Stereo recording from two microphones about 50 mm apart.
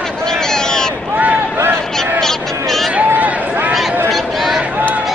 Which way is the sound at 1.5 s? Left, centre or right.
Right.